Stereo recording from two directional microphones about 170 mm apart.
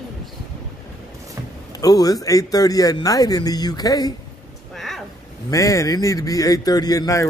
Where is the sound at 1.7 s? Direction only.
20° left (ahead or behind).